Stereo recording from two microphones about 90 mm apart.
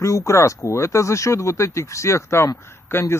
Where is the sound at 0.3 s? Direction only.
30° left (ahead or behind).